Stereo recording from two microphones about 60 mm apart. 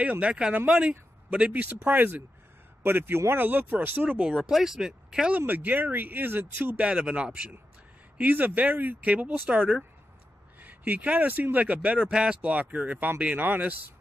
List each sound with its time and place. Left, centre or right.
0.0 s speech: right
4.4 s speech: centre
5.5 s speech: right
6.8 s speech: centre